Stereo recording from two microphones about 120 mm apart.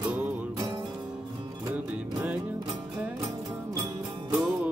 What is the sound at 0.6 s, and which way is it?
Music, 35° right (ahead or behind).